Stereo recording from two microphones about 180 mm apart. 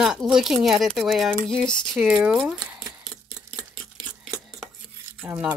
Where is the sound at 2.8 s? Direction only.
20° right (ahead or behind).